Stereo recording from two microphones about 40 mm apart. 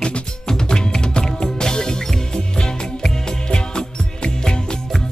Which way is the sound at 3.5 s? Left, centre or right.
Left.